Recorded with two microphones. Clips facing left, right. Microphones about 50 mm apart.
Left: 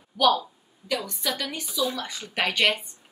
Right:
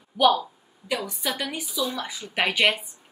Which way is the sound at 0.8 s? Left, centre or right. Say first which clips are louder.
Even; centre.